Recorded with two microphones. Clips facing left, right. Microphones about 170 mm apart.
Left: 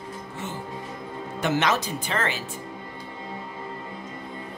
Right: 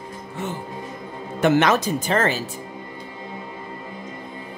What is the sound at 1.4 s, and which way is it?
Speech, 55° right (ahead or behind).